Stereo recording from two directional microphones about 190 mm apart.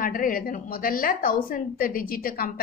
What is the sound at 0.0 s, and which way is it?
A woman's voice, 50° left (ahead or behind).